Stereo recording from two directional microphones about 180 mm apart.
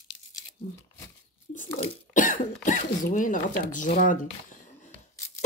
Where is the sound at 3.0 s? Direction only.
45° left (ahead or behind).